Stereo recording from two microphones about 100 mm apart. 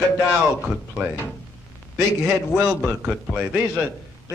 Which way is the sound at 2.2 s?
10° right (ahead or behind).